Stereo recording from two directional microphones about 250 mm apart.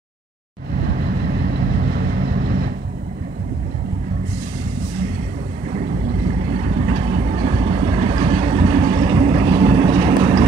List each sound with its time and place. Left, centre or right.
1.3 s vehicle: right
6.5 s vehicle: right